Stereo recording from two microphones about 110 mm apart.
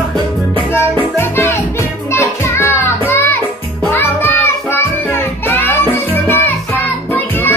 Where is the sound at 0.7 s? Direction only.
20° left (ahead or behind).